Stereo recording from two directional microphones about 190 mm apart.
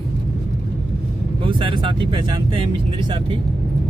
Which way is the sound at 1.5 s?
25° right (ahead or behind).